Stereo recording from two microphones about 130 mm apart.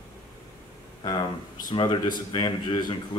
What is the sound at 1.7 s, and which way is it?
Speech, 35° left (ahead or behind).